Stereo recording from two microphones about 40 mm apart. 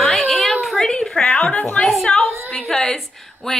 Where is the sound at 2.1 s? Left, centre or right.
Left.